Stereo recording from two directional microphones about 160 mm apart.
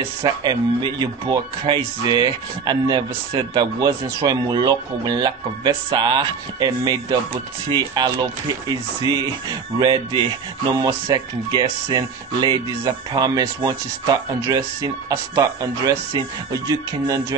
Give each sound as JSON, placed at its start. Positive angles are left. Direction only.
{"t": 0.2, "sound": "speech", "side_deg": -25}